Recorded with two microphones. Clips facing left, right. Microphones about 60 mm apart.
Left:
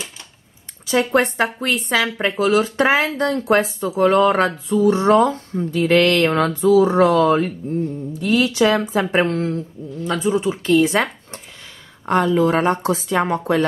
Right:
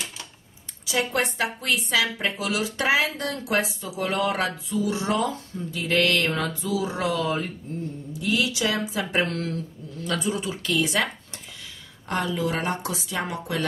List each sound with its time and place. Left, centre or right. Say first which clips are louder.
0.8 s speech: left 8 dB; left